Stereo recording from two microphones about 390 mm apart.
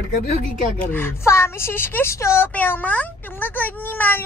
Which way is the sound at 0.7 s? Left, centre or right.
Centre.